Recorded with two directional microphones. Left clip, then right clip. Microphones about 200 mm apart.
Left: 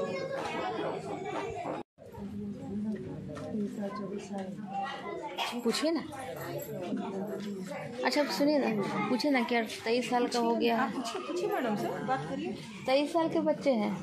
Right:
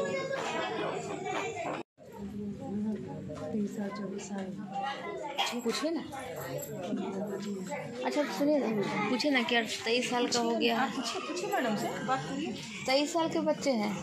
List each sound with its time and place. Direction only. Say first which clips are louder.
5.7 s speech: left 2 dB; 50° left (ahead or behind)
8.0 s a woman's voice: left 3 dB; 55° left (ahead or behind)
12.8 s a woman's voice: left 1 dB; 30° left (ahead or behind)